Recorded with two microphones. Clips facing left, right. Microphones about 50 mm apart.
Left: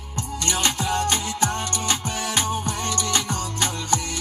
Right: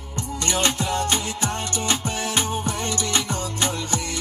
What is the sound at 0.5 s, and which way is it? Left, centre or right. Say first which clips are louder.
Music: right 1 dB; right.